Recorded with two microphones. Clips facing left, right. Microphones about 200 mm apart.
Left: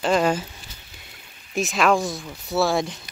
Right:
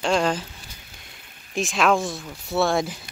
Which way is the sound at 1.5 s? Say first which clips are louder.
Left 1 dB; centre (ahead or behind).